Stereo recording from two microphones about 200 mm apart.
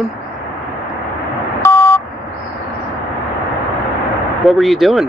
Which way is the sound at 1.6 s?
15° left (ahead or behind).